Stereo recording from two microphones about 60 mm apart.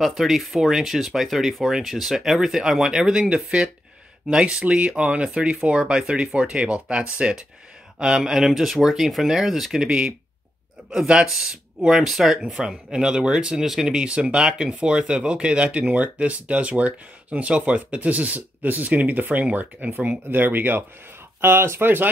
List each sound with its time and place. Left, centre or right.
0.0 s speech: centre; by 22.1 s right